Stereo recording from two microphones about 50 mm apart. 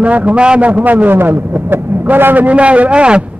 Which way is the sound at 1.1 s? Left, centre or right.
Right.